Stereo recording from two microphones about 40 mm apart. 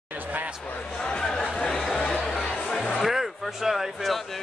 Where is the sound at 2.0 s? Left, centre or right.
Left.